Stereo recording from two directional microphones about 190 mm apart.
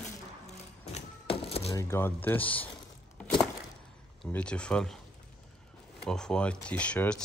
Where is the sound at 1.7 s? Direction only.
15° left (ahead or behind).